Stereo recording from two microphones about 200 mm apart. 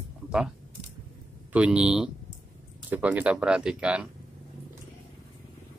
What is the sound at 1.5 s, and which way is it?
Speech, 5° right (ahead or behind).